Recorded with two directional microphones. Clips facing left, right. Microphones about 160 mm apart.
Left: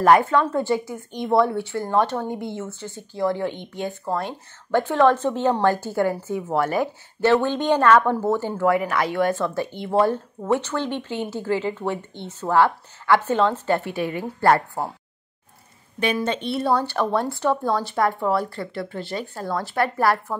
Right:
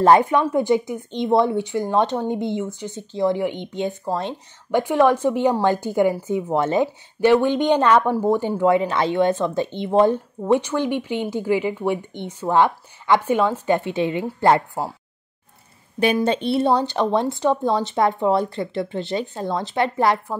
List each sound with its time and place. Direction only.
0.0 s a woman's voice: 20° right (ahead or behind)
16.3 s speech: 30° right (ahead or behind)